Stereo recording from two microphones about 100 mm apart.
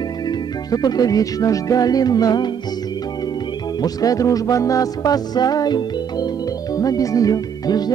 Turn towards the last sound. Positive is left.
turn(degrees=40)  # may be behind; listen again after turning